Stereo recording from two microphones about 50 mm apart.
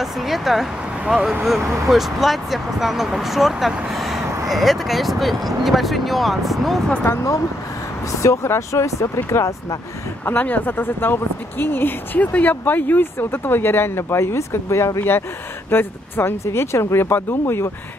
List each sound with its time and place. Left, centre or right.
0.0 s speech: centre
7.1 s speech: left
8.1 s speech: left
10.4 s speech: left
12.2 s speech: left